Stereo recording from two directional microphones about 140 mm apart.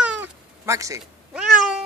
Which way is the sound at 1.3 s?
5° right (ahead or behind).